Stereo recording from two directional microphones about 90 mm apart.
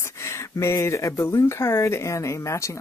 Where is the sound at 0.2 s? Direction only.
30° left (ahead or behind).